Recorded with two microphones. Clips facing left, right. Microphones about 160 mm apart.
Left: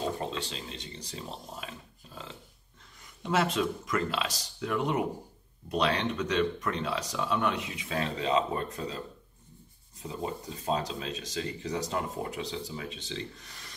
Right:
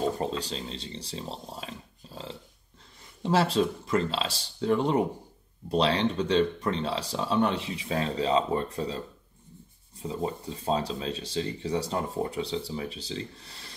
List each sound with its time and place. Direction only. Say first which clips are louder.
0.2 s speech: right 4 dB; 35° right (ahead or behind)
10.0 s speech: right 4 dB; 30° right (ahead or behind)